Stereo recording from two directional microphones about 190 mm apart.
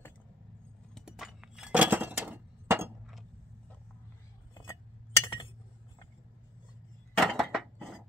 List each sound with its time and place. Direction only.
0.9 s chink: centre (ahead or behind)
5.2 s chink: 25° left (ahead or behind)
7.2 s a sound: centre (ahead or behind)